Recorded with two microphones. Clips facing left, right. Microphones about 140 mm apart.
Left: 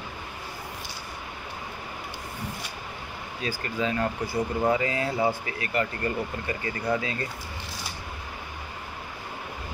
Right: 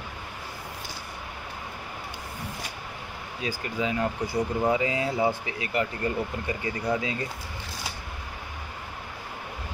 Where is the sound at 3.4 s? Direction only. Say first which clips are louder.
Even; 15° right (ahead or behind).